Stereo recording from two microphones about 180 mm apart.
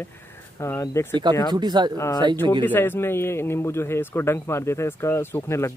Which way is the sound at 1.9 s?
20° left (ahead or behind).